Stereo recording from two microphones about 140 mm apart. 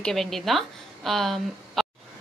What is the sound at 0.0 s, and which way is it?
A woman's voice, centre (ahead or behind).